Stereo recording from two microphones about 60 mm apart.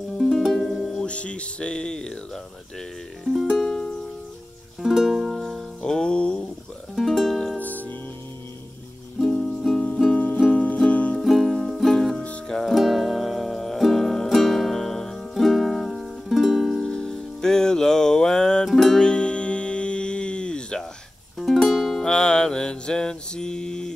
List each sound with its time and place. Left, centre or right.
0.2 s music: centre
1.0 s speech: centre
3.5 s music: centre
5.4 s music: centre
7.0 s music: centre
7.5 s music: left
9.2 s music: centre
10.1 s music: left
11.1 s music: centre
16.8 s music: centre
18.7 s music: centre
18.9 s music: centre
21.4 s music: centre